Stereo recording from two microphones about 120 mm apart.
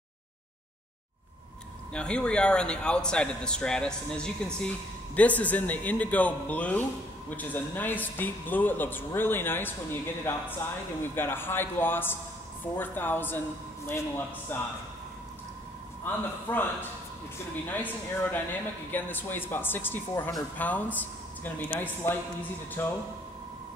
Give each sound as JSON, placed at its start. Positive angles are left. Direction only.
{"t": 2.0, "sound": "a man's voice", "side_deg": 10}
{"t": 16.0, "sound": "a man's voice", "side_deg": 15}
{"t": 17.6, "sound": "a man's voice", "side_deg": 15}